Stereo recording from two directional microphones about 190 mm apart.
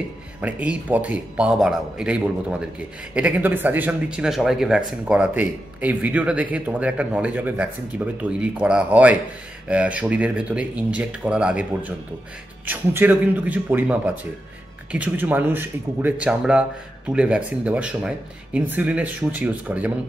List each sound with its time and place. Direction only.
0.4 s speech: 5° right (ahead or behind)